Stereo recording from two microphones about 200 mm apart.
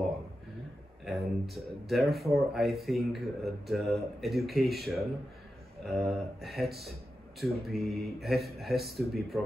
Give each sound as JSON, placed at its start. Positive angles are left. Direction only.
{"t": 1.0, "sound": "speech", "side_deg": 0}